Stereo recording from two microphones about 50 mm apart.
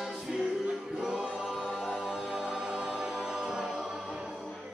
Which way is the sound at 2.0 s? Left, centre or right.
Centre.